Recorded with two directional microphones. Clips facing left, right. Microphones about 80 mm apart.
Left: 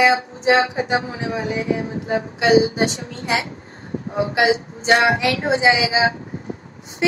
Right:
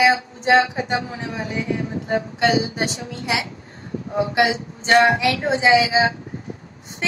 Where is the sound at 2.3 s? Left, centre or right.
Right.